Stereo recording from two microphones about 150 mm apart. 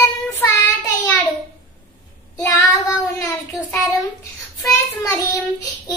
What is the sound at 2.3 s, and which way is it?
Child singing, 20° left (ahead or behind).